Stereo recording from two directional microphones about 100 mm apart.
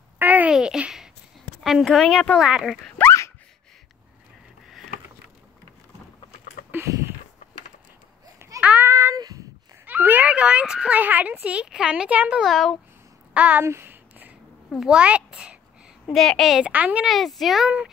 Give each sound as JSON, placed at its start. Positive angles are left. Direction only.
{"t": 0.2, "sound": "babbling", "side_deg": -15}
{"t": 1.6, "sound": "speech", "side_deg": 0}
{"t": 3.0, "sound": "dog", "side_deg": 25}
{"t": 6.7, "sound": "a sound", "side_deg": -30}
{"t": 8.5, "sound": "a sound", "side_deg": -15}
{"t": 9.1, "sound": "a sound", "side_deg": -35}
{"t": 9.8, "sound": "a child's voice", "side_deg": -20}
{"t": 12.4, "sound": "speech", "side_deg": 0}
{"t": 13.3, "sound": "speech", "side_deg": -15}
{"t": 13.7, "sound": "a sound", "side_deg": -25}
{"t": 14.7, "sound": "a child's voice", "side_deg": -5}
{"t": 16.1, "sound": "speech", "side_deg": 0}
{"t": 16.6, "sound": "a child's voice", "side_deg": -15}
{"t": 17.0, "sound": "speech", "side_deg": 0}